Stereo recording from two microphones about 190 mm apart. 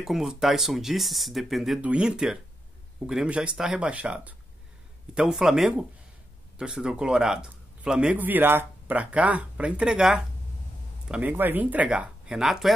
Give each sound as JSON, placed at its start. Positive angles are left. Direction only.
{"t": 0.0, "sound": "speech", "side_deg": 0}